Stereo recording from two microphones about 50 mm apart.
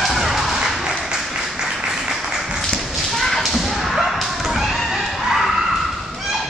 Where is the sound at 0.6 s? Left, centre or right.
Centre.